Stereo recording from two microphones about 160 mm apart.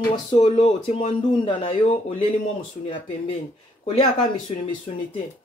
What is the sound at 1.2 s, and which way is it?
Speech, 30° left (ahead or behind).